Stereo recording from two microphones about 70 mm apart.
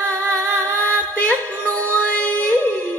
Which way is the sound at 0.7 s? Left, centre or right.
Left.